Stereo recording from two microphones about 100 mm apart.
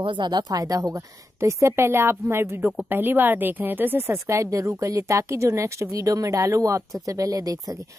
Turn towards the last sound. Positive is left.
turn(degrees=-35)  # may be behind; listen again after turning